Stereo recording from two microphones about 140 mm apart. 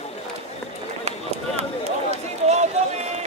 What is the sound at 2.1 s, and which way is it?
Run, 55° right (ahead or behind).